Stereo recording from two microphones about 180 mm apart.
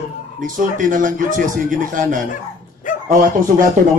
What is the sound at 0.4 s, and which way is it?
Speech, 45° right (ahead or behind).